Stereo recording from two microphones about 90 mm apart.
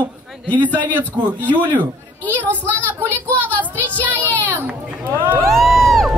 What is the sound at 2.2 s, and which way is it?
Speech, 15° left (ahead or behind).